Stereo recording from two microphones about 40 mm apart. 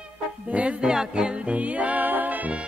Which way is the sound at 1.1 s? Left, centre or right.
Right.